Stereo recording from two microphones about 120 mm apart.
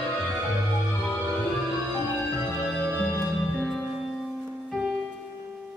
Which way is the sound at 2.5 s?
10° left (ahead or behind).